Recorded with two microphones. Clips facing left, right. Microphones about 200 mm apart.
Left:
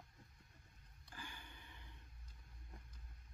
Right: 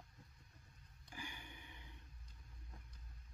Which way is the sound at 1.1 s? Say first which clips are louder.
Right 3 dB; 15° right (ahead or behind).